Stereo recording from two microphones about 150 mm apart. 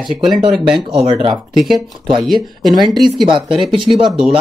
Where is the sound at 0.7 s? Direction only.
40° right (ahead or behind).